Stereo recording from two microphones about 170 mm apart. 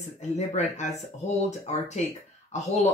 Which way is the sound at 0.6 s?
40° left (ahead or behind).